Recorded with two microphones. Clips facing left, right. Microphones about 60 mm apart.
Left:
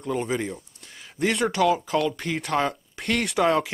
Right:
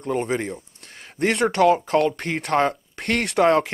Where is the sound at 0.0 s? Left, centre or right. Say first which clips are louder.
Right 3 dB; right.